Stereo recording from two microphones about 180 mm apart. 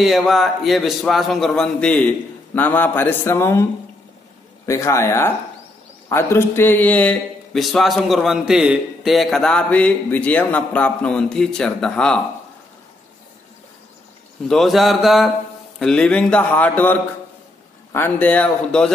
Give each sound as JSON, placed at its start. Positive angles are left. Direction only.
{"t": 0.0, "sound": "a man's voice", "side_deg": 0}
{"t": 4.6, "sound": "a man's voice", "side_deg": 15}
{"t": 14.5, "sound": "a man's voice", "side_deg": 0}